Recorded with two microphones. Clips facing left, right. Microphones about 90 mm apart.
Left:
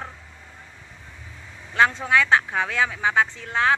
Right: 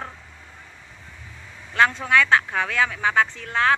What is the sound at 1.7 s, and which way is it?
Speech, 20° left (ahead or behind).